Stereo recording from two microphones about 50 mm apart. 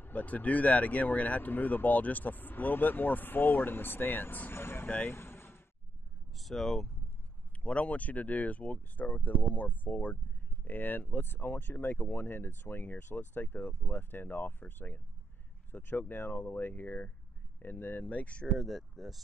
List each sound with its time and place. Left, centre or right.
0.1 s speech: left
4.8 s speech: left
5.1 s a sound: left
6.3 s speech: centre
7.6 s speech: left
18.7 s speech: centre